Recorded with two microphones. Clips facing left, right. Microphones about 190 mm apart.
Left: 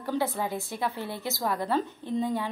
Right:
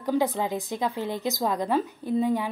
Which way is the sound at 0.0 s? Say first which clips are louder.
Right 4 dB; 15° right (ahead or behind).